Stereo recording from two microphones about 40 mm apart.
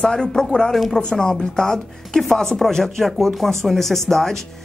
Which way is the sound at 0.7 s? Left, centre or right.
Centre.